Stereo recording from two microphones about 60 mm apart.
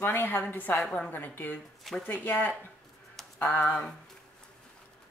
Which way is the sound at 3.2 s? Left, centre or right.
Centre.